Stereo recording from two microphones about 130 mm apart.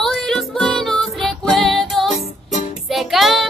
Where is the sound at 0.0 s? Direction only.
Centre (ahead or behind).